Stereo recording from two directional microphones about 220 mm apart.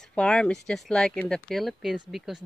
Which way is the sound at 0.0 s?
5° left (ahead or behind).